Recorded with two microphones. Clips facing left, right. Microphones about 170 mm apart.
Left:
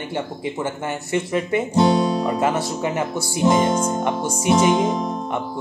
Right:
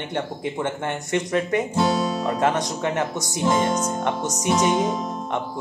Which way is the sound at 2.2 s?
5° left (ahead or behind).